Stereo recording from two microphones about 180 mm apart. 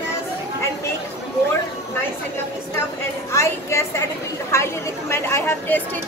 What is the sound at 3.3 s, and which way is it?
A woman's voice, 15° left (ahead or behind).